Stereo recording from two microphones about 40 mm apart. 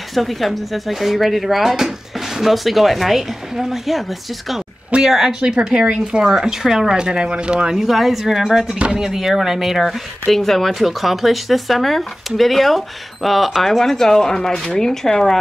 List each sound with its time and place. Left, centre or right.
0.1 s speech: centre
5.4 s speech: centre
7.0 s speech: right
7.8 s speech: centre
8.7 s speech: right
9.0 s speech: centre
10.2 s speech: centre
10.7 s speech: centre